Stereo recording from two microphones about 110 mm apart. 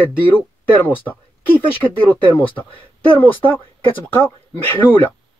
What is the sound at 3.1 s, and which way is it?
Speech, 15° left (ahead or behind).